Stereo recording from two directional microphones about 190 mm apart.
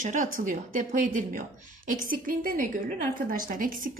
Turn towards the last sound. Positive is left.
turn(degrees=-45)  # may be behind; listen again after turning